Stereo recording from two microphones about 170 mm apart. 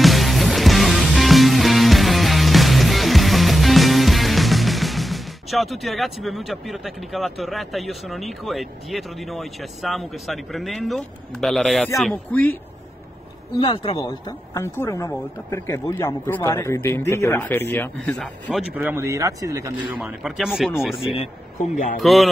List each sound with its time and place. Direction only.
0.0 s music: centre (ahead or behind)
12.0 s speech: 5° left (ahead or behind)
13.6 s speech: 30° left (ahead or behind); by 18.6 s 5° left (ahead or behind)
18.7 s speech: 10° right (ahead or behind)
19.9 s speech: 5° right (ahead or behind)
22.0 s speech: centre (ahead or behind)